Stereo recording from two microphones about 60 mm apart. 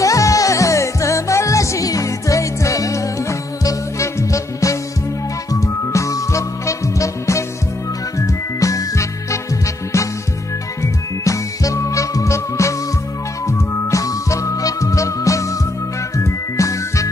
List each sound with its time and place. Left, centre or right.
0.0 s music: left
8.5 s music: left
10.8 s music: left